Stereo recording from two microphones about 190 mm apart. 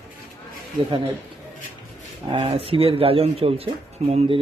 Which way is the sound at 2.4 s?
30° right (ahead or behind).